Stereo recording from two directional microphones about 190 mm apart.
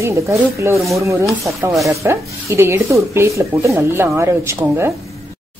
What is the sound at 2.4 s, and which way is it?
Stir, 15° right (ahead or behind).